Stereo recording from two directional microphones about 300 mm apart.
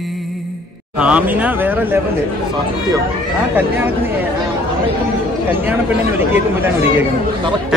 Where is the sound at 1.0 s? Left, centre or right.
Centre.